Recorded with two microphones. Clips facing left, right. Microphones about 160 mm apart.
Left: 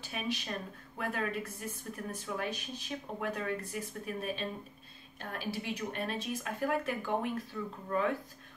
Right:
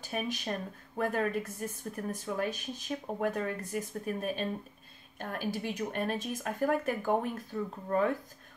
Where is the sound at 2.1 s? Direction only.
45° right (ahead or behind).